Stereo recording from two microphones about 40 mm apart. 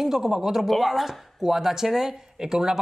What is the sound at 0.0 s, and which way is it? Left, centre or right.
Speech, centre.